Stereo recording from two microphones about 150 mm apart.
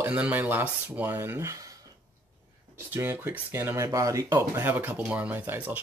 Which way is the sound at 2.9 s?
15° right (ahead or behind).